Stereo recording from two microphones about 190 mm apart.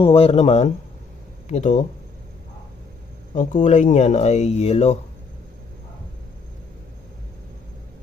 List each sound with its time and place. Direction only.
0.0 s speech: 30° left (ahead or behind)
3.3 s speech: 40° left (ahead or behind)